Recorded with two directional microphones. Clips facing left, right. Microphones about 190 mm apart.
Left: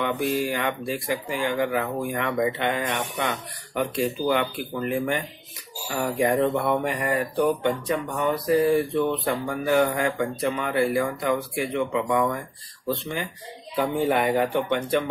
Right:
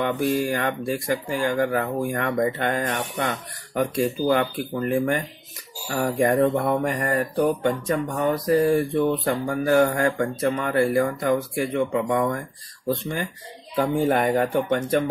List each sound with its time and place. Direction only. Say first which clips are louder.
0.0 s speech: right 2 dB; 45° right (ahead or behind)